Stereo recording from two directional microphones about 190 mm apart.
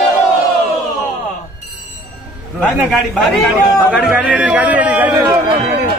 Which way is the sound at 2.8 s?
Centre (ahead or behind).